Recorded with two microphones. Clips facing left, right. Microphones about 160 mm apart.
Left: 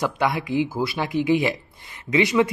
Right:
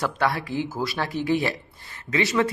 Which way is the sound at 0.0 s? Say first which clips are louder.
Left 2 dB; 15° left (ahead or behind).